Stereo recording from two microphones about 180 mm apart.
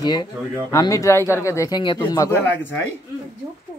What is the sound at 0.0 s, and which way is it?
Speech, 20° left (ahead or behind).